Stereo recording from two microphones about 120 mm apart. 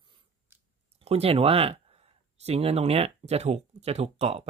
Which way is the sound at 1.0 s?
55° right (ahead or behind).